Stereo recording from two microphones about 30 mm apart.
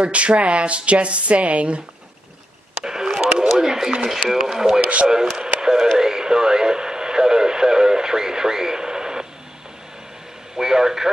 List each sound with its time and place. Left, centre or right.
0.0 s speech: right
2.8 s a sound: right
4.0 s speech: centre
5.4 s a sound: right
5.9 s radio: centre
10.5 s a man's voice: centre